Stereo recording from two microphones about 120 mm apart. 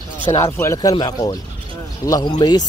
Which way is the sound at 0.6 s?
25° left (ahead or behind).